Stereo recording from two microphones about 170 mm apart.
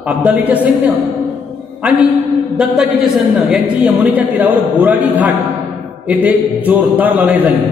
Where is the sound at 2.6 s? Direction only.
5° right (ahead or behind).